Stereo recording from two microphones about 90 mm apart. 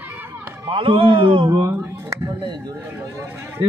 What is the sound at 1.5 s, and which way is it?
Speech, 35° right (ahead or behind).